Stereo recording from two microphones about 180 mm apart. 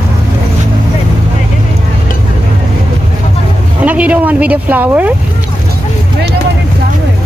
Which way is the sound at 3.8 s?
10° right (ahead or behind).